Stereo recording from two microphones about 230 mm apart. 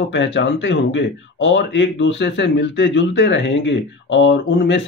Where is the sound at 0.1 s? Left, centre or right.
Left.